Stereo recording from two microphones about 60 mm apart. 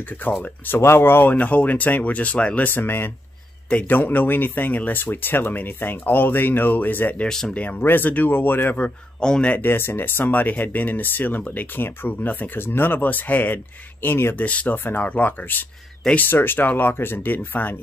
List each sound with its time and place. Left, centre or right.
0.7 s speech: left
2.7 s speech: left
3.6 s speech: left
7.2 s speech: centre
7.8 s speech: left
9.2 s speech: centre
9.5 s speech: left
14.0 s speech: left
14.3 s speech: left
16.2 s speech: left